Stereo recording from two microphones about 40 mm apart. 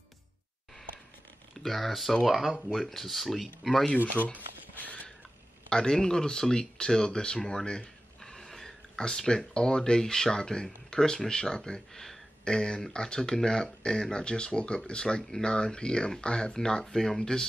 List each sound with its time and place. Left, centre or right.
1.6 s speech: centre
4.0 s speech: right
5.7 s speech: centre
8.2 s gasp: centre
8.9 s speech: centre
9.5 s speech: left